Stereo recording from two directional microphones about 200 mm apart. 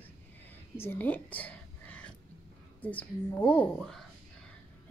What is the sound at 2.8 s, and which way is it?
Speech, 5° left (ahead or behind).